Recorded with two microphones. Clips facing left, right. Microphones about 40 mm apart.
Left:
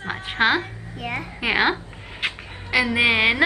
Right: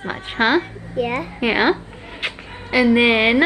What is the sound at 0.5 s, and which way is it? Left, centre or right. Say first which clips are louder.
A woman's voice: right 7 dB; centre.